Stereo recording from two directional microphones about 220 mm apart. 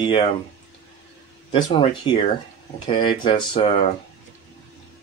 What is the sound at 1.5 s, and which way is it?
Speech, 20° left (ahead or behind).